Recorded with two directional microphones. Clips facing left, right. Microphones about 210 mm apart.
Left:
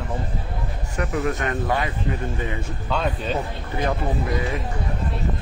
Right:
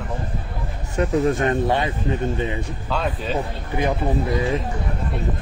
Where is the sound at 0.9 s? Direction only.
30° right (ahead or behind).